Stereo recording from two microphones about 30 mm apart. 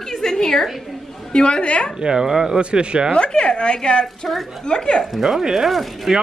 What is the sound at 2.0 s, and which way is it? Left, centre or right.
Speech, right.